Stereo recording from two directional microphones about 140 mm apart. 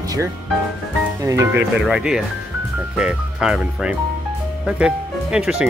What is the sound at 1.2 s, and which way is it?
Speech, 25° right (ahead or behind).